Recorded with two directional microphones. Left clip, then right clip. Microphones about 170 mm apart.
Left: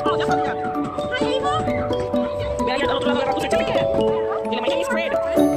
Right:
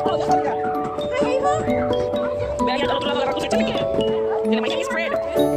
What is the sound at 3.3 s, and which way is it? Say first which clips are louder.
Music: left 1 dB; 20° left (ahead or behind).